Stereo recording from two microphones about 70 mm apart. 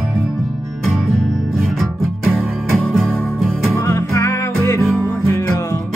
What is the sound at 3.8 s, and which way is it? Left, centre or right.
Music, left.